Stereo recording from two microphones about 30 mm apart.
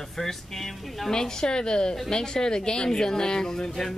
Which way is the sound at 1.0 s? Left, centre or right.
Left.